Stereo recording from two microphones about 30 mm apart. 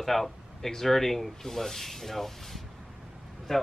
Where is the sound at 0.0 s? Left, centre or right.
Centre.